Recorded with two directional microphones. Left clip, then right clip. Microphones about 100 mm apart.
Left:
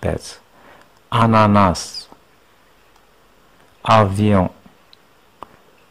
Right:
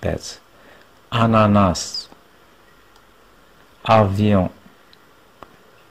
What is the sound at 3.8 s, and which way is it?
Speech, 40° left (ahead or behind).